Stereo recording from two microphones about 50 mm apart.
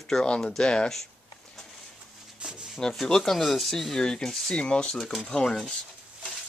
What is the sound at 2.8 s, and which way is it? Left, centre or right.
Speech, centre.